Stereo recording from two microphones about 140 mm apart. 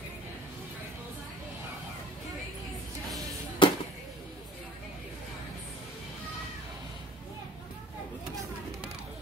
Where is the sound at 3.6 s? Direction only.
35° left (ahead or behind).